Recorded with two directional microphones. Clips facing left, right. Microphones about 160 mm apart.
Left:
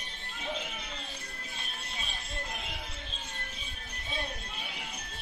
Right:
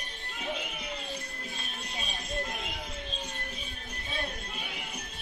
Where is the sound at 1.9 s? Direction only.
15° right (ahead or behind).